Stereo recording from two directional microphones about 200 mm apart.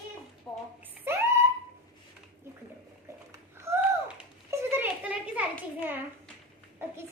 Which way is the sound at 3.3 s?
15° right (ahead or behind).